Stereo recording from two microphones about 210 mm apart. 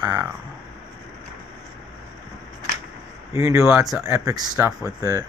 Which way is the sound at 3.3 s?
10° right (ahead or behind).